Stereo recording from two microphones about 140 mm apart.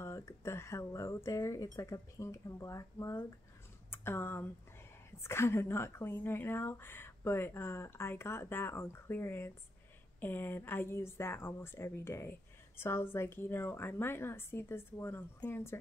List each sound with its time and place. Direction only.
0.0 s speech: 20° left (ahead or behind)